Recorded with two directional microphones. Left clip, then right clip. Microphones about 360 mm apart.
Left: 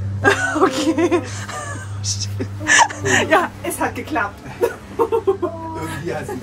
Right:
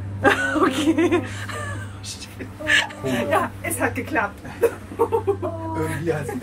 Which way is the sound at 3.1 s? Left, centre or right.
Left.